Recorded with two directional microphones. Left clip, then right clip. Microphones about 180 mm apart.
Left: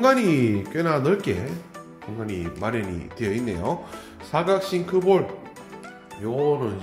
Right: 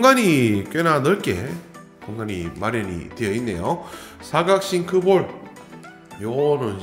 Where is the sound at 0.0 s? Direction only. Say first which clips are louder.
Right 4 dB; 25° right (ahead or behind).